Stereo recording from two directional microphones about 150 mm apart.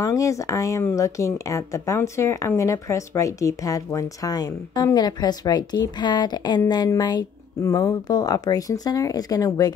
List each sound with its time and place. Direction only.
0.0 s speech: 20° left (ahead or behind)